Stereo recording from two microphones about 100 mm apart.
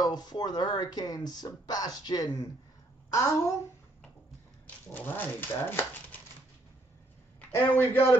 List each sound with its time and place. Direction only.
0.0 s a woman's voice: 45° left (ahead or behind)
4.9 s speech: 20° left (ahead or behind)
7.7 s speech: 20° left (ahead or behind)